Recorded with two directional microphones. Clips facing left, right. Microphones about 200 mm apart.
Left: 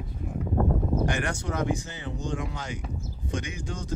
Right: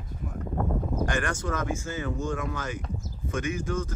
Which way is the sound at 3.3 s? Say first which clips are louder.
Right 5 dB; 15° left (ahead or behind).